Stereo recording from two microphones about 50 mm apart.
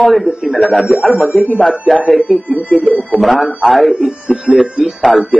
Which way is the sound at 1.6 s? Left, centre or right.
Centre.